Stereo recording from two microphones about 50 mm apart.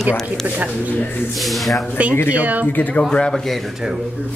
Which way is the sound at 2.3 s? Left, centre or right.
Right.